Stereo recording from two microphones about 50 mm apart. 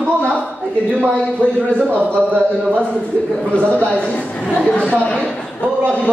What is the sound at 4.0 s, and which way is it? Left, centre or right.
A woman's voice, left.